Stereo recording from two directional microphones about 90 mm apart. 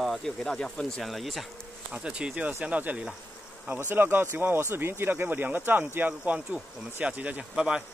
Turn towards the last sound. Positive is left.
turn(degrees=-15)  # may be behind; listen again after turning